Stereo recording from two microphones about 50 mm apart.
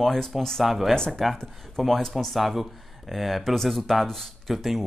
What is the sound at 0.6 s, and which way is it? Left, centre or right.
Speech, centre.